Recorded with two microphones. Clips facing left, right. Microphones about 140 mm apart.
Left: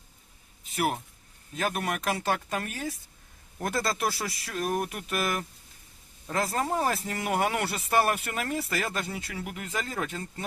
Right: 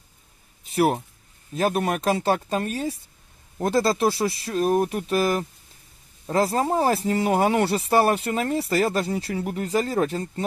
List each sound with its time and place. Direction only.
0.7 s speech: 30° right (ahead or behind)